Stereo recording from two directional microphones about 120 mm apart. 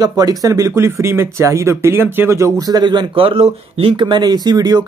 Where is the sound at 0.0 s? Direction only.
30° right (ahead or behind).